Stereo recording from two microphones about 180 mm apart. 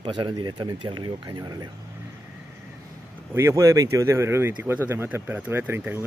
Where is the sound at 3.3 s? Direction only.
15° right (ahead or behind).